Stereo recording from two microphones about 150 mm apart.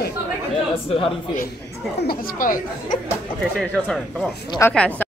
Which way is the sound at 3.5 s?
5° left (ahead or behind).